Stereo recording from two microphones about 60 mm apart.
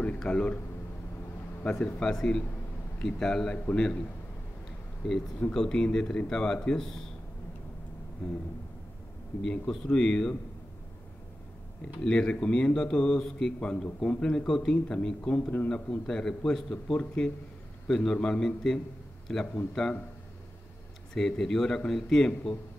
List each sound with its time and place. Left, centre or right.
0.2 s a man's voice: centre
1.6 s a man's voice: centre
5.5 s a man's voice: centre
9.5 s a man's voice: centre
12.0 s a man's voice: centre
17.8 s a man's voice: centre
21.1 s a man's voice: centre